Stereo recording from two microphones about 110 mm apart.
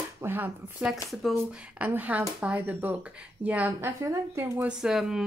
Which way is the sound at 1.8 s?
15° right (ahead or behind).